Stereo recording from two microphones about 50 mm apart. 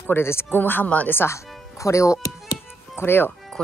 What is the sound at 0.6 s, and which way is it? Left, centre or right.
Speech, left.